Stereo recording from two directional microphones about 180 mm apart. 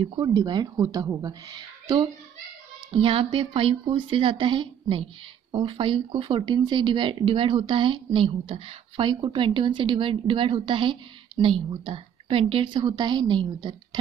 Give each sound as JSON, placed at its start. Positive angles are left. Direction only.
{"t": 0.0, "sound": "speech", "side_deg": -25}